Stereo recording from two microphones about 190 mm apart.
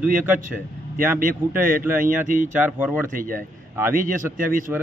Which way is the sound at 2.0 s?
45° right (ahead or behind).